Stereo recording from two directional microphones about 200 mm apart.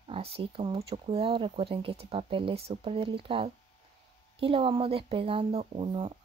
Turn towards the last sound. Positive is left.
turn(degrees=-25)  # may be behind; listen again after turning